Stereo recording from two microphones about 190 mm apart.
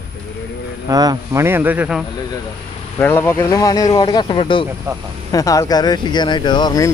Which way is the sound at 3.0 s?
10° left (ahead or behind).